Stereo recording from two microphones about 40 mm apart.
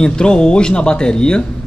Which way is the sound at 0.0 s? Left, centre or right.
Left.